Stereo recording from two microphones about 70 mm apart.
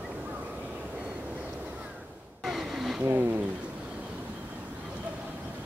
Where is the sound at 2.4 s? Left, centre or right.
Centre.